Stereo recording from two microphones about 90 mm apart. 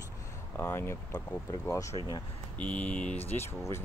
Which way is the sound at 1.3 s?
40° left (ahead or behind).